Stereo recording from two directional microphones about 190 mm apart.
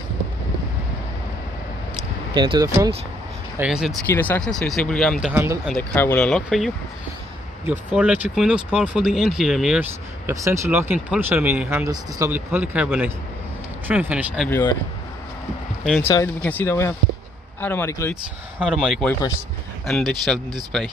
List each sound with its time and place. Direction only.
2.3 s speech: 25° right (ahead or behind)
3.5 s speech: 5° right (ahead or behind)
4.1 s speech: 10° left (ahead or behind)
5.3 s speech: 15° right (ahead or behind)
5.7 s speech: 10° left (ahead or behind)
10.2 s speech: 15° right (ahead or behind)
14.5 s speech: 10° left (ahead or behind)
16.0 s speech: 15° left (ahead or behind)
18.6 s speech: 5° right (ahead or behind)